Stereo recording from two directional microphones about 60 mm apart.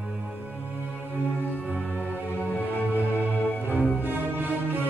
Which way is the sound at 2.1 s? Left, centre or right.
Right.